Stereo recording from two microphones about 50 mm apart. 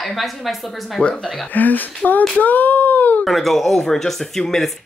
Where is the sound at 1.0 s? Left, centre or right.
Left.